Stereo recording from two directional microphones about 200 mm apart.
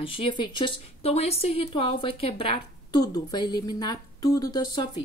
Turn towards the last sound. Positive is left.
turn(degrees=20)  # may be behind; listen again after turning